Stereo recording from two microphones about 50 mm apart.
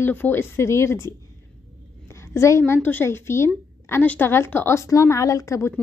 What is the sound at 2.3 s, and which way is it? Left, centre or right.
Speech, left.